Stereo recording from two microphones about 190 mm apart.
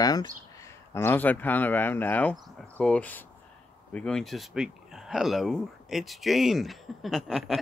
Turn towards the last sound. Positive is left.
turn(degrees=0)  # may be behind; listen again after turning